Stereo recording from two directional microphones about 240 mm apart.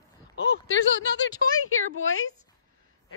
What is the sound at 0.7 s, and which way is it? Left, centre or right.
Speech, left.